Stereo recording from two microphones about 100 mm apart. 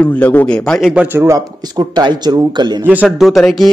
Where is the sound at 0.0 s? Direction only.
20° left (ahead or behind).